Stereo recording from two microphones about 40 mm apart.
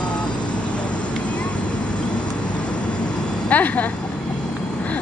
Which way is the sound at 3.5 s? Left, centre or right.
Left.